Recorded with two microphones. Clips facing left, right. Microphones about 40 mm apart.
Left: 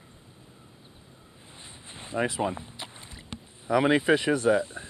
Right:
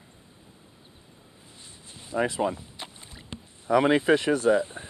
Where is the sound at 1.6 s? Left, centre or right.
Left.